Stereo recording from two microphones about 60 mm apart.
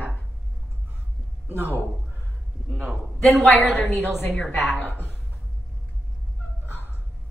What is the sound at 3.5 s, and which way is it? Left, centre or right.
Speech, left.